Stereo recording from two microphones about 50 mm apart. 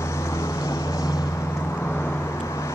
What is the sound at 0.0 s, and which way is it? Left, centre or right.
Vehicle, left.